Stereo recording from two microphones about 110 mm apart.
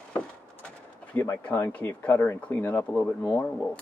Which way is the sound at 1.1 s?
15° left (ahead or behind).